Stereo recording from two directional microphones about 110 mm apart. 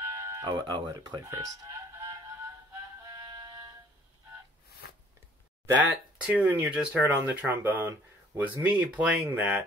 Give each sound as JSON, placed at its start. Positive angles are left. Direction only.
{"t": 0.0, "sound": "music", "side_deg": -30}
{"t": 6.2, "sound": "speech", "side_deg": -15}